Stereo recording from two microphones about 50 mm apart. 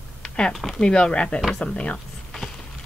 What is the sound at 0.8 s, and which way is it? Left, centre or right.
Speech, centre.